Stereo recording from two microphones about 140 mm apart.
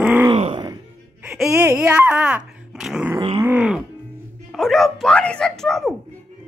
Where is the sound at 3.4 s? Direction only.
10° right (ahead or behind).